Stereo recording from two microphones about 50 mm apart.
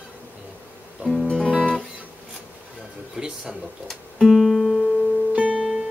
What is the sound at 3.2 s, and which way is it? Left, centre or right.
Speech, centre.